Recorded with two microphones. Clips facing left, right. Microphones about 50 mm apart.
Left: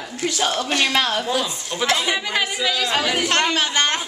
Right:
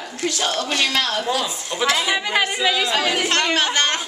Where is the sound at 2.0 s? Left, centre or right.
Centre.